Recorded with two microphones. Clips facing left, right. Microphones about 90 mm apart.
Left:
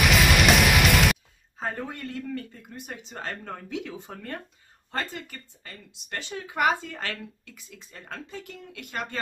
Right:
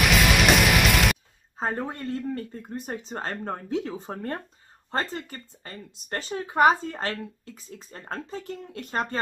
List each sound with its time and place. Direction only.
0.0 s music: centre (ahead or behind)
1.6 s speech: 35° right (ahead or behind)